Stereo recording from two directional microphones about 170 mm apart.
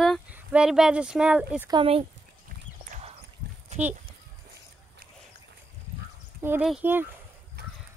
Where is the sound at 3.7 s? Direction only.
40° right (ahead or behind).